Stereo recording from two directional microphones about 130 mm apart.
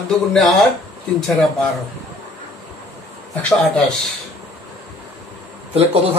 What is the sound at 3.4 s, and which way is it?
Speech, 10° left (ahead or behind).